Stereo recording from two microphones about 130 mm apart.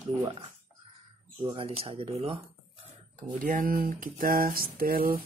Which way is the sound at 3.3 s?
90° right.